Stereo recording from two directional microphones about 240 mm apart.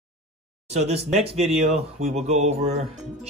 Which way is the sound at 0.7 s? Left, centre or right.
Right.